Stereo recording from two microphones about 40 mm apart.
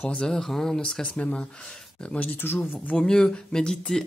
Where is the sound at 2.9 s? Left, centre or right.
Centre.